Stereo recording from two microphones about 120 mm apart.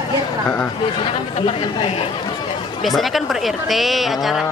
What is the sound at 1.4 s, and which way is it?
Speech, 50° left (ahead or behind).